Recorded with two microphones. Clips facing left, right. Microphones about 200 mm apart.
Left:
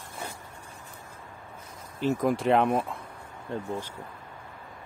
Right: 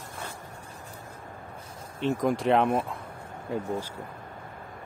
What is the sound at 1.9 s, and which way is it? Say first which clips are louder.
Speech: even; centre (ahead or behind).